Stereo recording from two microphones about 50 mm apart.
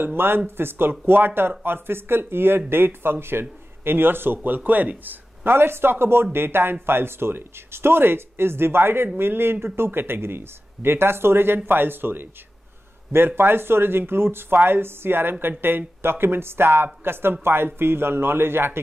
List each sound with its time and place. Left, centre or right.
0.0 s a man's voice: right